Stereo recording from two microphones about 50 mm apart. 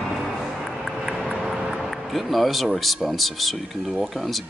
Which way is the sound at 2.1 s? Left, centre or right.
Centre.